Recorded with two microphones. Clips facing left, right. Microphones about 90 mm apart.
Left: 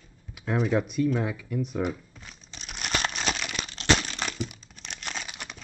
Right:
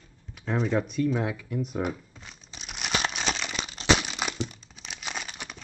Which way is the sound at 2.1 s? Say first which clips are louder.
Even; centre (ahead or behind).